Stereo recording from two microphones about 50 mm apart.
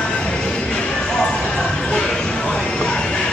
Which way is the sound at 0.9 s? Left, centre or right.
Centre.